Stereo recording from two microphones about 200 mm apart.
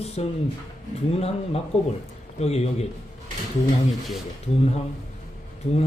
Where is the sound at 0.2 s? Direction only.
30° left (ahead or behind).